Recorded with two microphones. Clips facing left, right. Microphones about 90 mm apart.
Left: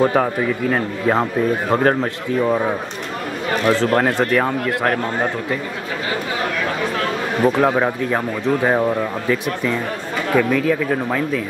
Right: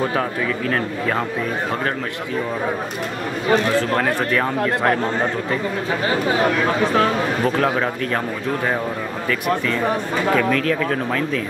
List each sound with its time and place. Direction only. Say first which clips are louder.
0.0 s speech: left 5 dB; 15° left (ahead or behind)
1.7 s a man's voice: left 7 dB; 35° left (ahead or behind)
3.6 s speech: left 3 dB; 20° left (ahead or behind)
7.4 s speech: left 6 dB; 15° left (ahead or behind)
10.3 s speech: left 4 dB; 10° left (ahead or behind)